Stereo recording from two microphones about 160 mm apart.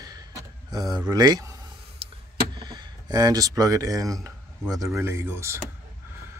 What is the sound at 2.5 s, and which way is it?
Speech, 25° right (ahead or behind).